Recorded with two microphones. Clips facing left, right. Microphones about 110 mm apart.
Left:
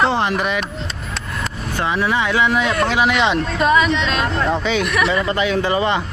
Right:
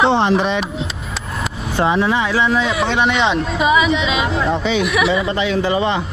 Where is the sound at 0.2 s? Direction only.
30° right (ahead or behind).